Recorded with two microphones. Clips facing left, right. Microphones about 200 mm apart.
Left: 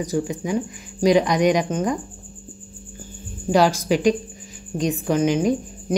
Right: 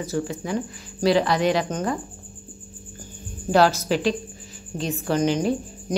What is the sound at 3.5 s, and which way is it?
A man's voice, 10° left (ahead or behind).